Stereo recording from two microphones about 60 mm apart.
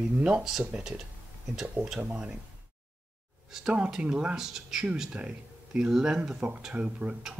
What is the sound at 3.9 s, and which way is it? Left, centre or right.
Speech, centre.